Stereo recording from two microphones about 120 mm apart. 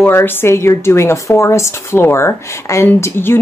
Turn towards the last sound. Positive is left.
turn(degrees=20)  # may be behind; listen again after turning